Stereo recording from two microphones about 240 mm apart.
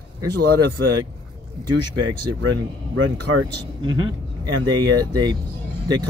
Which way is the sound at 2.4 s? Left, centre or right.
Right.